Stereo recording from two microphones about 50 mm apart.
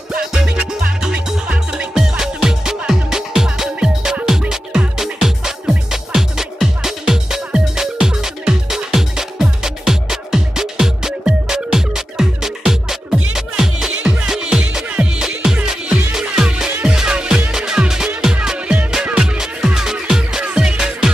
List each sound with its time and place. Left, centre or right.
1.0 s music: centre